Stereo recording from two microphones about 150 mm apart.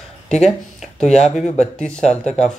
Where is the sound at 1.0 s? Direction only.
50° left (ahead or behind).